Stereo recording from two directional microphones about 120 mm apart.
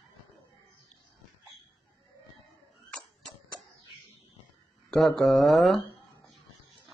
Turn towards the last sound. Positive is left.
turn(degrees=0)  # may be behind; listen again after turning